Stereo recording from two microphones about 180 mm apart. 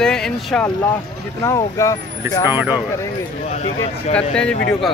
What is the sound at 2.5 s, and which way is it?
Speech, 10° right (ahead or behind).